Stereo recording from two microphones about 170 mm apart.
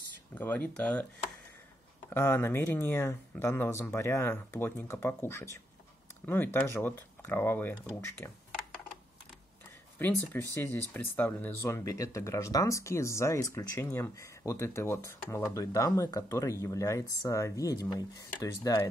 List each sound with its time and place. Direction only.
0.3 s speech: 10° left (ahead or behind)
2.0 s speech: 15° left (ahead or behind)
9.9 s speech: 10° left (ahead or behind)